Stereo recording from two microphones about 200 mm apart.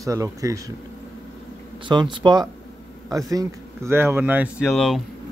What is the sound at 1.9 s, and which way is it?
Speech, 25° right (ahead or behind).